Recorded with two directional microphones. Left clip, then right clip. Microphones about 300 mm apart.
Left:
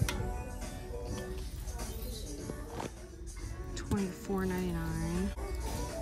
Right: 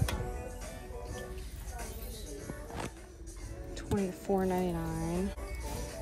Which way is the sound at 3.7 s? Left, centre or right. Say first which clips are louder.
Right 3 dB; centre.